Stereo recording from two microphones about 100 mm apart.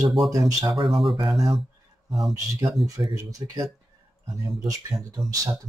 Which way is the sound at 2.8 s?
Centre (ahead or behind).